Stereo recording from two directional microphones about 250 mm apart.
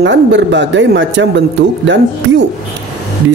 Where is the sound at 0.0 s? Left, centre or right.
Right.